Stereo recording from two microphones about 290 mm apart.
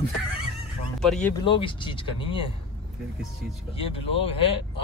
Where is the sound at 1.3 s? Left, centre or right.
Centre.